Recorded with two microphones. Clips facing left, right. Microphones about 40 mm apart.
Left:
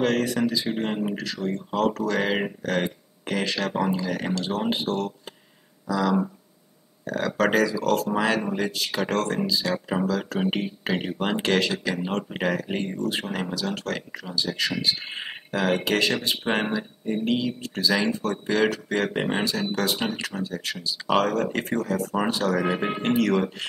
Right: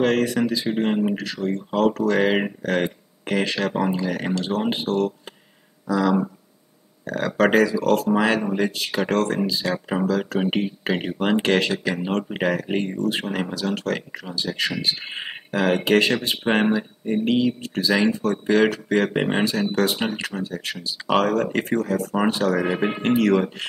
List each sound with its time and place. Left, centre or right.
0.0 s speech: centre
5.9 s speech: centre
7.2 s speech: centre